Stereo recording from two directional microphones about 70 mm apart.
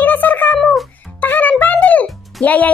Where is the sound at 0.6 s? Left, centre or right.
Centre.